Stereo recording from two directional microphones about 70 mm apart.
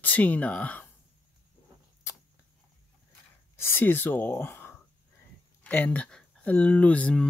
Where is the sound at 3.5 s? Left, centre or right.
Left.